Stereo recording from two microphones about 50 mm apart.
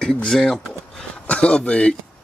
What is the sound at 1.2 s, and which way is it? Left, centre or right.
Speech, left.